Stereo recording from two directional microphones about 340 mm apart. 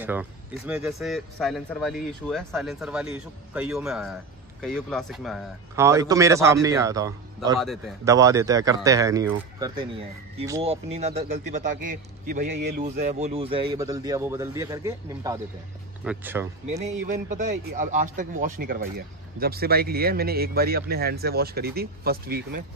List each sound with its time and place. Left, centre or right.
0.0 s a man's voice: centre
16.6 s a man's voice: centre